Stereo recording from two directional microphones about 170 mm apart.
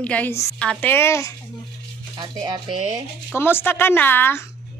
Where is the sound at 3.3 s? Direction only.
15° left (ahead or behind).